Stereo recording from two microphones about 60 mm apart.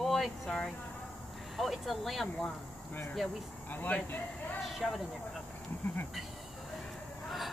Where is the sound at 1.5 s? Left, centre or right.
Centre.